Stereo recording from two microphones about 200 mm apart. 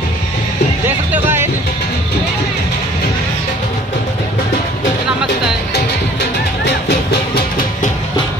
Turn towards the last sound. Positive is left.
turn(degrees=50)  # may be behind; listen again after turning